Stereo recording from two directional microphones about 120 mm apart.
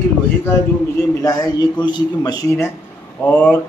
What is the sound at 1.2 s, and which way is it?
Speech, 35° left (ahead or behind).